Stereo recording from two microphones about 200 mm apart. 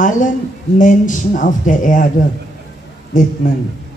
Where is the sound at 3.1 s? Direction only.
40° left (ahead or behind).